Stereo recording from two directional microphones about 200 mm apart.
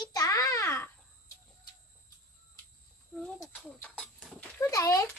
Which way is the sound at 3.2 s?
5° left (ahead or behind).